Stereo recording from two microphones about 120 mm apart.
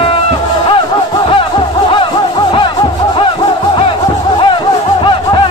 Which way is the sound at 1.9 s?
45° left (ahead or behind).